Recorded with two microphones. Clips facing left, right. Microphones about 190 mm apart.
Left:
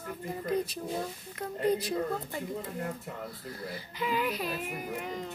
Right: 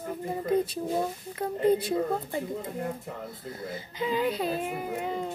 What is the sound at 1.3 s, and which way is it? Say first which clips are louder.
Speech: right 5 dB; 25° right (ahead or behind).